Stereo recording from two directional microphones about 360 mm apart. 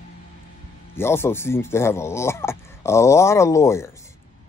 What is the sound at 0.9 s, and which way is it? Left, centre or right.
Speech, centre.